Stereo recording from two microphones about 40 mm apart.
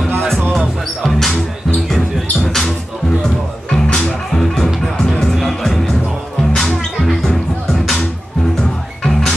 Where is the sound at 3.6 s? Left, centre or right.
Centre.